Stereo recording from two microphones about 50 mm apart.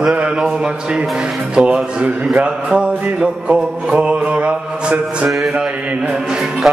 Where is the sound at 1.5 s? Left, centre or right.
Right.